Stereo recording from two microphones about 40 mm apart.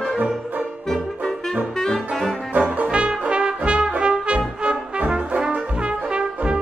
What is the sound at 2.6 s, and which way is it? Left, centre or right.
Trombone, right.